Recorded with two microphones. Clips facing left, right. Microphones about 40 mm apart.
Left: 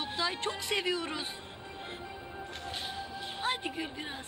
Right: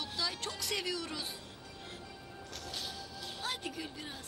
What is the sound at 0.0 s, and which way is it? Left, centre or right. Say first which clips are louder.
Music: left 5 dB; left.